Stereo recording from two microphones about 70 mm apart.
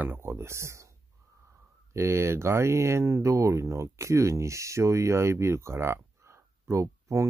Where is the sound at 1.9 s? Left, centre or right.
Right.